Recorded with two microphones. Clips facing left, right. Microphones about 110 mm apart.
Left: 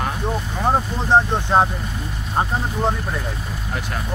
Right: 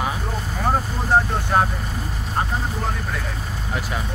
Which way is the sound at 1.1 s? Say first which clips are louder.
Left 3 dB; 25° left (ahead or behind).